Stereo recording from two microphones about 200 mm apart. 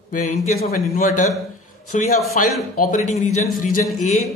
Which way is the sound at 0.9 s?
40° left (ahead or behind).